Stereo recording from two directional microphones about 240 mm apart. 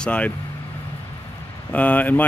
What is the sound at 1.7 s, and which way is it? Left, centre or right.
Speech, centre.